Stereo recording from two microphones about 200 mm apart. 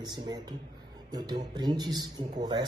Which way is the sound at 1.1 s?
20° right (ahead or behind).